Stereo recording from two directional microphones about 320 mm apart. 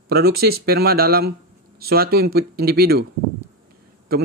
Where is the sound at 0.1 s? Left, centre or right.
Right.